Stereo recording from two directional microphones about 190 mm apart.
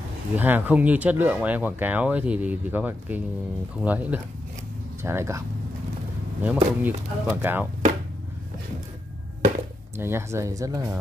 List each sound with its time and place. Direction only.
0.4 s speech: 10° right (ahead or behind)
6.4 s speech: 10° right (ahead or behind)
9.9 s speech: 15° right (ahead or behind)